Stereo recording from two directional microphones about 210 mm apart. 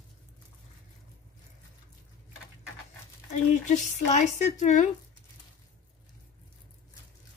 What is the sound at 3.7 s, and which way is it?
A woman's voice, 35° left (ahead or behind).